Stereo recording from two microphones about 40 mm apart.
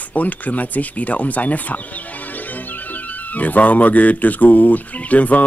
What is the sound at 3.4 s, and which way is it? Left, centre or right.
Speech, left.